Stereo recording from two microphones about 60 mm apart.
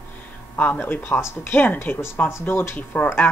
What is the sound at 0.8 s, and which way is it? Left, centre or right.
Speech, left.